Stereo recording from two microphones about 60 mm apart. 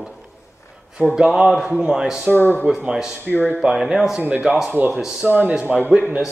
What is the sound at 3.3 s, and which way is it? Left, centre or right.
Speech, left.